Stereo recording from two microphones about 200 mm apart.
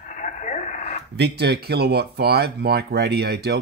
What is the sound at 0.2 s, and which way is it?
Radio, 40° left (ahead or behind).